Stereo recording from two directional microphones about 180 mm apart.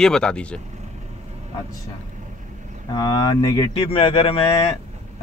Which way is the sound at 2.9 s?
20° left (ahead or behind).